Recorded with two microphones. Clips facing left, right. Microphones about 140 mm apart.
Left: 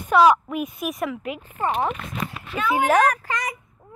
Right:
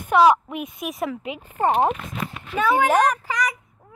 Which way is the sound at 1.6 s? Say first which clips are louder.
Right 5 dB; 45° right (ahead or behind).